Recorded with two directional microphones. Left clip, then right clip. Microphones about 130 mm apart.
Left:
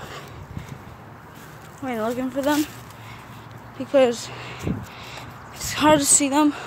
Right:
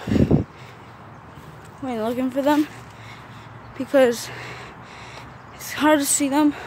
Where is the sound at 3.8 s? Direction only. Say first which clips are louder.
Right 1 dB; 30° right (ahead or behind).